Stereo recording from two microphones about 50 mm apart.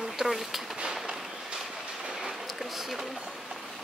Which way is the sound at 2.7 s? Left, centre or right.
Centre.